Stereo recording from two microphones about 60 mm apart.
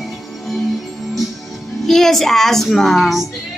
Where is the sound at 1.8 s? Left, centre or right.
Centre.